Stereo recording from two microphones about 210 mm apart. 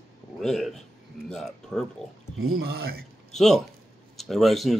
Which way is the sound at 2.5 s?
45° right (ahead or behind).